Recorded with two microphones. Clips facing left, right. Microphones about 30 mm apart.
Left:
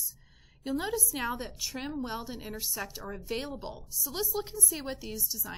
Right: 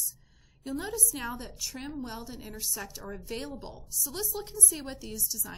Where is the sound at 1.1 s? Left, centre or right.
Centre.